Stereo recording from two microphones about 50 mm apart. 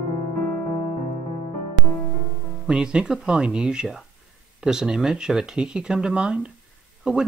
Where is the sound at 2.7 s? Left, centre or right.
Centre.